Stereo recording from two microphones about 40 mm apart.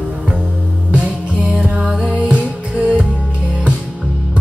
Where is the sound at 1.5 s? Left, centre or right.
Right.